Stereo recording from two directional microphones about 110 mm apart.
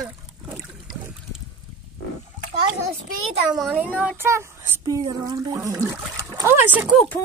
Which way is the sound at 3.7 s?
15° right (ahead or behind).